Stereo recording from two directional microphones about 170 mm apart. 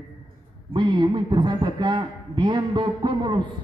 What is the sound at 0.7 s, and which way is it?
A man's voice, 30° right (ahead or behind).